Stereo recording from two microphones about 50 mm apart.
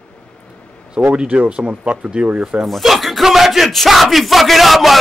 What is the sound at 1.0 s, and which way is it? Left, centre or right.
Speech, right.